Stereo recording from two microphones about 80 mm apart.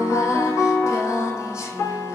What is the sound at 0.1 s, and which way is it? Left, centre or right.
Music, left.